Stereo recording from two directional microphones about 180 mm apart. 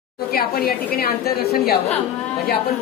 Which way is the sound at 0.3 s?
55° left (ahead or behind).